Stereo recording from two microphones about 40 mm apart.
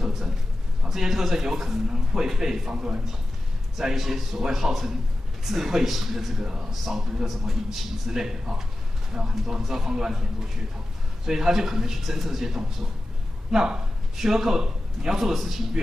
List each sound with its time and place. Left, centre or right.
0.8 s speech: centre
2.7 s a man's voice: right
3.7 s a man's voice: centre
11.2 s a man's voice: centre